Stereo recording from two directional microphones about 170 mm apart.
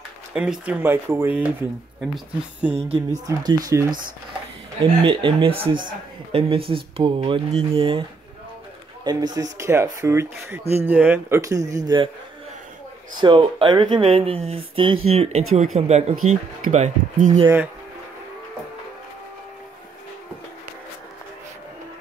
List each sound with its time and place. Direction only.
0.3 s speech: 5° right (ahead or behind)
2.7 s speech: 35° right (ahead or behind)
3.3 s speech: 20° right (ahead or behind)
5.0 s speech: 30° right (ahead or behind)
9.0 s speech: 25° right (ahead or behind)
13.2 s speech: 30° right (ahead or behind); by 17.4 s 45° right (ahead or behind)